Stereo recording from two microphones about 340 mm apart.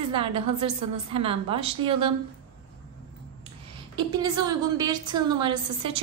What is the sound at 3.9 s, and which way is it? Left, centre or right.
A woman's voice, centre.